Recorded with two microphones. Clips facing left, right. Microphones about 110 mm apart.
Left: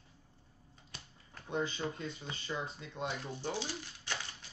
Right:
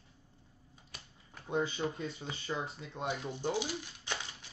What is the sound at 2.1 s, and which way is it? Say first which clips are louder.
Speech: right 2 dB; 25° right (ahead or behind).